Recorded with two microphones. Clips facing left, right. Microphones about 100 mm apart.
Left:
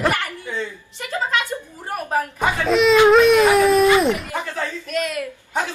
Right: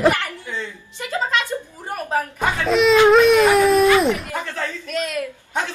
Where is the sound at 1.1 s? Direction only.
15° left (ahead or behind).